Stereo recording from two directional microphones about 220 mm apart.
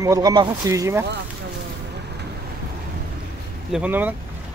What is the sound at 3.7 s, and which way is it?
Speech, 5° right (ahead or behind).